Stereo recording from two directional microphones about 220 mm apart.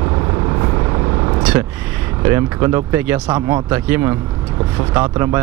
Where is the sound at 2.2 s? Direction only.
10° right (ahead or behind).